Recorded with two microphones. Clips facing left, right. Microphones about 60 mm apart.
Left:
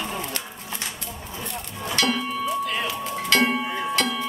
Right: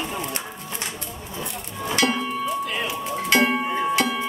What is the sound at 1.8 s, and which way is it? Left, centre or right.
Music, right.